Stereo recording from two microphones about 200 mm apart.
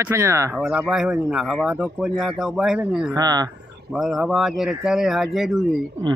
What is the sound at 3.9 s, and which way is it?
Speech, centre (ahead or behind).